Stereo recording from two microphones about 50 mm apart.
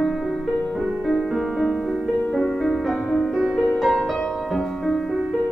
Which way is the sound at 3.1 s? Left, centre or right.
Centre.